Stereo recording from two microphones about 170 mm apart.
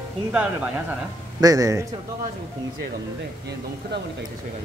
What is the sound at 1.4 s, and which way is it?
Speech, 20° right (ahead or behind).